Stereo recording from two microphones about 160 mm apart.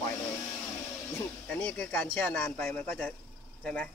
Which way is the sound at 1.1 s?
10° left (ahead or behind).